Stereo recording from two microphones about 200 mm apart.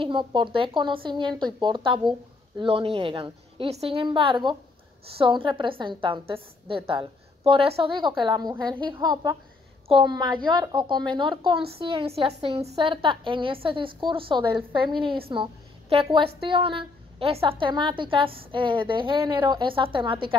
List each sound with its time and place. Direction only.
0.0 s a woman's voice: 25° right (ahead or behind)